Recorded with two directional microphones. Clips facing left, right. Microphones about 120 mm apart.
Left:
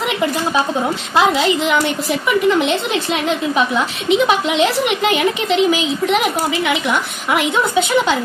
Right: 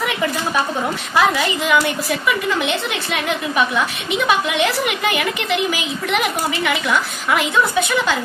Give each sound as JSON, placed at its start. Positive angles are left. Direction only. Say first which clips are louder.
{"t": 1.1, "sound": "a woman's voice", "louder": "left 3 dB", "side_deg": 20}